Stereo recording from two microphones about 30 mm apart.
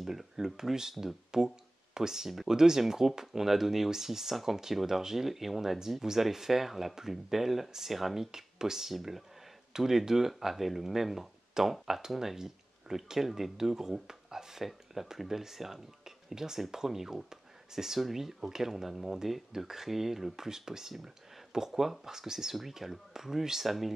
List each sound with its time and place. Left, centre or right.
0.0 s speech: centre
9.7 s a sound: centre
9.9 s speech: centre
20.3 s speech: centre